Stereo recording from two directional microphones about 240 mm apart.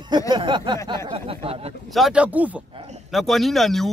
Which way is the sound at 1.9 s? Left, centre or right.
Centre.